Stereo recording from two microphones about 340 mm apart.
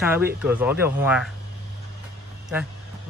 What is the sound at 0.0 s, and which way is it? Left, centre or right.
Speech, centre.